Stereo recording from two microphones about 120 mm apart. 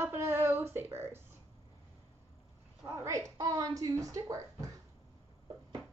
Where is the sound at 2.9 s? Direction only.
25° right (ahead or behind).